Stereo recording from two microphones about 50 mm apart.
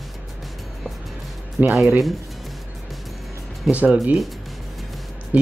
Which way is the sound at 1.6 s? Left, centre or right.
Right.